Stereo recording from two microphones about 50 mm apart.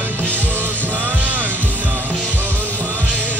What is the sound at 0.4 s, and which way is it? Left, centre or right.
Music, right.